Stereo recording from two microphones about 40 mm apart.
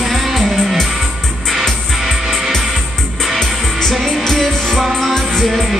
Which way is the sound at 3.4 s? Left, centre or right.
Centre.